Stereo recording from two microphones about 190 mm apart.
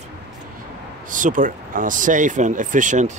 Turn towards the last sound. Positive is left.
turn(degrees=-40)  # may be behind; listen again after turning